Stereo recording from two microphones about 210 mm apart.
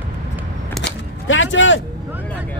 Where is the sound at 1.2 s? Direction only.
65° left (ahead or behind).